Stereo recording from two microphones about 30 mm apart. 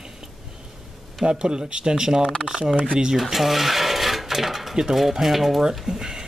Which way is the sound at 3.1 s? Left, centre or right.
Centre.